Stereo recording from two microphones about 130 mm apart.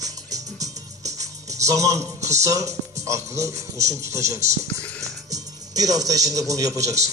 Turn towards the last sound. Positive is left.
turn(degrees=-25)  # may be behind; listen again after turning